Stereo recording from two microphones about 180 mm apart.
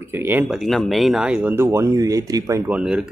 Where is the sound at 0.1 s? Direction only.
10° right (ahead or behind).